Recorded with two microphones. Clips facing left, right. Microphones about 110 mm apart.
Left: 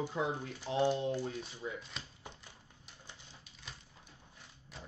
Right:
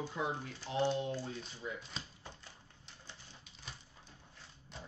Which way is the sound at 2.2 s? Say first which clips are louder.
Left 1 dB; 15° left (ahead or behind).